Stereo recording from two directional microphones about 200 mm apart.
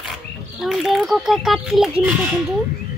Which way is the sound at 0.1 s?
Centre (ahead or behind).